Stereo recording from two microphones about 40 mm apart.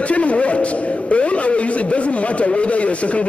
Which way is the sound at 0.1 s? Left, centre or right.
Left.